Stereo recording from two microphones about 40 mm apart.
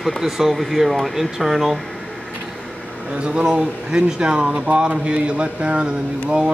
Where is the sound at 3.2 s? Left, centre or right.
Right.